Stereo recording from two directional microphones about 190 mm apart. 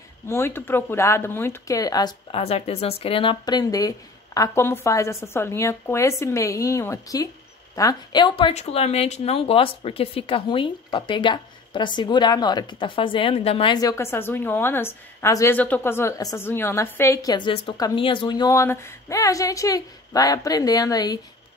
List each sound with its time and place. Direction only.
0.3 s speech: 10° left (ahead or behind)
2.3 s speech: 35° left (ahead or behind)